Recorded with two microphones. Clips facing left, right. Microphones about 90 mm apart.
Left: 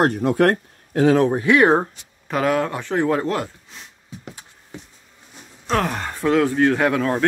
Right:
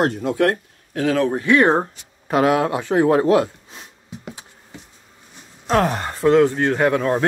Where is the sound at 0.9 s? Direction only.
30° left (ahead or behind).